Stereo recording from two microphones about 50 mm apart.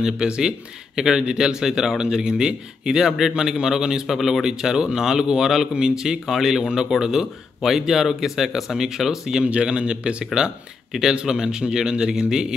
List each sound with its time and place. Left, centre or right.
0.0 s speech: centre
9.4 s speech: right
10.9 s speech: centre